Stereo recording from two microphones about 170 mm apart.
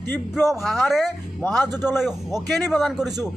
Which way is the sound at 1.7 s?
25° right (ahead or behind).